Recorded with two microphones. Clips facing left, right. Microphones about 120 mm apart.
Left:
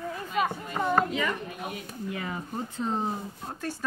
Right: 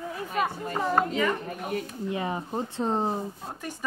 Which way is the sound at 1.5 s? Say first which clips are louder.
Right 5 dB; 45° right (ahead or behind).